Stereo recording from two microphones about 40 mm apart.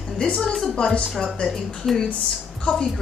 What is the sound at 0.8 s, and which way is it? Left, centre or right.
Speech, left.